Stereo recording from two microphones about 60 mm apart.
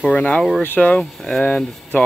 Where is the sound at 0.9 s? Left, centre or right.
Centre.